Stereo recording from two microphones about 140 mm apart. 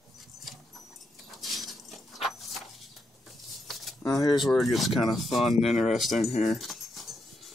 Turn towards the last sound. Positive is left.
turn(degrees=0)  # may be behind; listen again after turning